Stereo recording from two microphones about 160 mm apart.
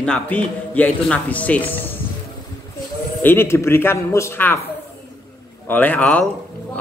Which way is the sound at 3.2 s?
15° left (ahead or behind).